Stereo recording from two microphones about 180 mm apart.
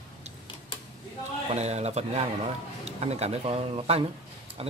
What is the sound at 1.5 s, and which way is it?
A man's voice, 35° right (ahead or behind).